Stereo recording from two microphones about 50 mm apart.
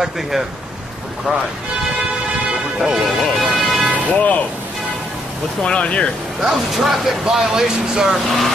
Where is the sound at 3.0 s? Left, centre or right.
Centre.